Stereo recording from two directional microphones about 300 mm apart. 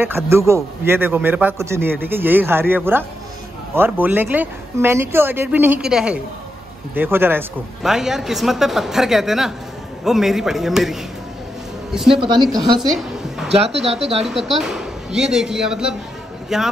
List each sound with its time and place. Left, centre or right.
0.0 s a man's voice: centre
12.2 s a man's voice: centre
12.8 s a woman's voice: centre
13.7 s speech: right
14.2 s speech: centre